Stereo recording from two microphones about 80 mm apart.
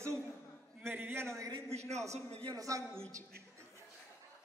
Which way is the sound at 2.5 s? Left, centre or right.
Right.